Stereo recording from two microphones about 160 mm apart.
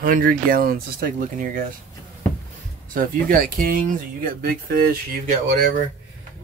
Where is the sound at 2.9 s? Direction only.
60° right (ahead or behind).